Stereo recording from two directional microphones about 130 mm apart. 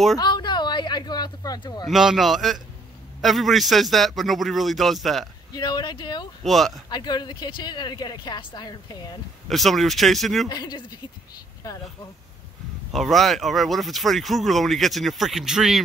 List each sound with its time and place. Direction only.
0.2 s a sound: 35° left (ahead or behind)
1.9 s speech: centre (ahead or behind)
5.5 s speech: 35° left (ahead or behind)
6.4 s speech: centre (ahead or behind)
6.9 s speech: 35° left (ahead or behind)
9.5 s speech: centre (ahead or behind)
10.5 s speech: 30° left (ahead or behind)
12.9 s speech: centre (ahead or behind)